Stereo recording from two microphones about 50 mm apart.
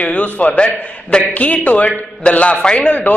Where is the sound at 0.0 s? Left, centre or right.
Left.